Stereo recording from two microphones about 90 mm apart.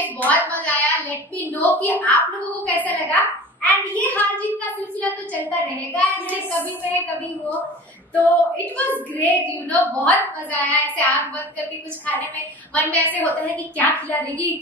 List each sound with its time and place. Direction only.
0.0 s a sound: 20° left (ahead or behind)
0.5 s a woman's voice: 15° left (ahead or behind)
8.1 s a woman's voice: 15° left (ahead or behind)